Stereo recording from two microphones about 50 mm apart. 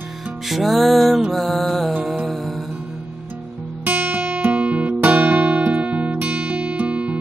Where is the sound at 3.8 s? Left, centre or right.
Right.